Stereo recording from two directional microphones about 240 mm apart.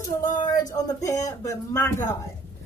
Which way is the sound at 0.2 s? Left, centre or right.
Left.